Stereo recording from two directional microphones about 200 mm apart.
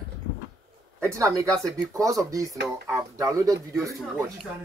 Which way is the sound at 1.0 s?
15° right (ahead or behind).